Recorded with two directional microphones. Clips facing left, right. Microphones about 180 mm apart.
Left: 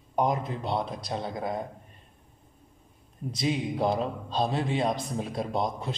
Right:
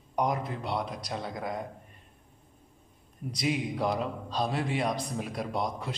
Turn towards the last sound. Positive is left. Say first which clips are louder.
# left 3 dB
turn(degrees=25)  # may be behind; listen again after turning